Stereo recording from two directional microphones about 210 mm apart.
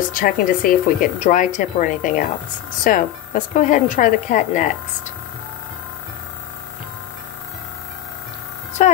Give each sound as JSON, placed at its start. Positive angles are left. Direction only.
{"t": 0.1, "sound": "speech", "side_deg": 40}
{"t": 8.8, "sound": "speech", "side_deg": 30}